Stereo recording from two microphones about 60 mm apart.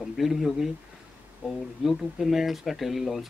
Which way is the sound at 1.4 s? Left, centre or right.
Centre.